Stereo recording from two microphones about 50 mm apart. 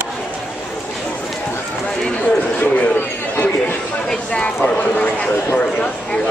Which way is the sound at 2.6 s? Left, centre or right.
Left.